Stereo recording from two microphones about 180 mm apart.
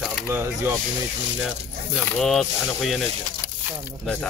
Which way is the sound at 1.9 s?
Centre (ahead or behind).